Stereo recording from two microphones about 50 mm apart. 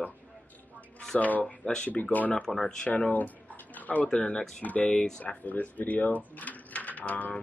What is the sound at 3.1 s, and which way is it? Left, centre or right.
Bathtub, left.